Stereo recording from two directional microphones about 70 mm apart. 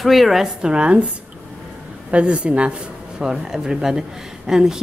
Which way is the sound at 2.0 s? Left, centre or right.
Centre.